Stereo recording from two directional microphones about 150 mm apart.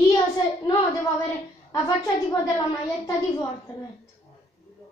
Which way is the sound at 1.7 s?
20° left (ahead or behind).